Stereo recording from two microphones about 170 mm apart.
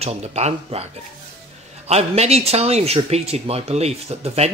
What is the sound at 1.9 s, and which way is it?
Speech, 40° right (ahead or behind).